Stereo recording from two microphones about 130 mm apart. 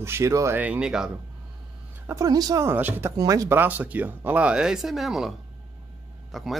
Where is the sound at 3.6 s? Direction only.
15° right (ahead or behind).